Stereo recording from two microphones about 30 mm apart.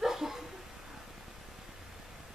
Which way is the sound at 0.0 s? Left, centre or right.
Centre.